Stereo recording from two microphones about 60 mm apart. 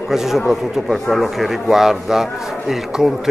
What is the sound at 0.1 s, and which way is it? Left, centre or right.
A man's voice, centre.